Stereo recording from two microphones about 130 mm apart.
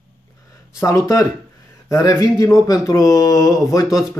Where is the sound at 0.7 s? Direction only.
25° left (ahead or behind).